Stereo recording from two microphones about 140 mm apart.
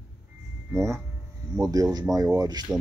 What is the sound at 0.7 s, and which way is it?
Speech, 20° right (ahead or behind).